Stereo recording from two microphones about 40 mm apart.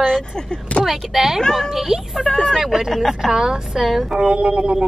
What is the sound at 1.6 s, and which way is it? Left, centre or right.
Speech, centre.